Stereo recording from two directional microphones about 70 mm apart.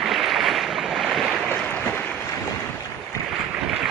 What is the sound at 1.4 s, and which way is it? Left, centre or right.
Boat, left.